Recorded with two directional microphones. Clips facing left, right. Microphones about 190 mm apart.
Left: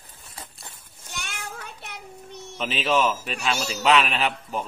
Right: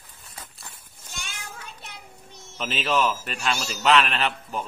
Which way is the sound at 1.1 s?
65° left (ahead or behind).